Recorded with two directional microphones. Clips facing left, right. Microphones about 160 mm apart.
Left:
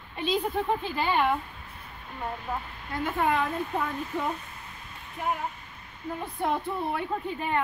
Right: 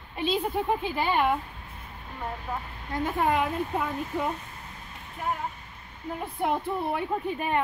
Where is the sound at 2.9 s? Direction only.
20° right (ahead or behind).